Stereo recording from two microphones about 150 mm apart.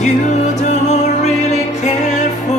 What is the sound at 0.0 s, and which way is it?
Music, 50° left (ahead or behind).